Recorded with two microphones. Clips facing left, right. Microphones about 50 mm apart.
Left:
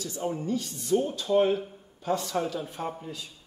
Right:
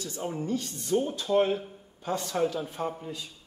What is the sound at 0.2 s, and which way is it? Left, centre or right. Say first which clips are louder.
Speech: left 1 dB; centre.